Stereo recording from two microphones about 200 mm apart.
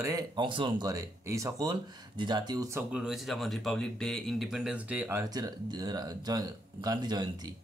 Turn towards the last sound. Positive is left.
turn(degrees=-20)  # may be behind; listen again after turning